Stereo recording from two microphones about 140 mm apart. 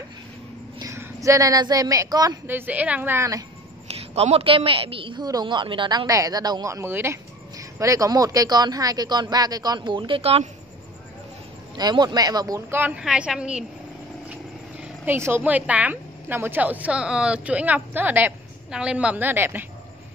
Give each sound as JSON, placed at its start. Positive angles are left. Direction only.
{"t": 0.7, "sound": "speech", "side_deg": -20}
{"t": 2.4, "sound": "speech", "side_deg": -15}
{"t": 3.8, "sound": "a woman's voice", "side_deg": -45}
{"t": 11.7, "sound": "a woman's voice", "side_deg": -30}
{"t": 12.7, "sound": "speech", "side_deg": -15}
{"t": 14.8, "sound": "speech", "side_deg": -15}